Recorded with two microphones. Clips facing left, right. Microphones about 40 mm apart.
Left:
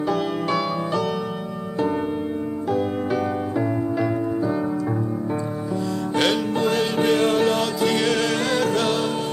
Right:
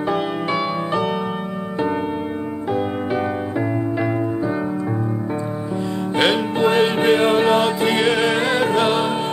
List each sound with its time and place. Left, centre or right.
0.1 s music: right
2.7 s music: right
6.1 s music: right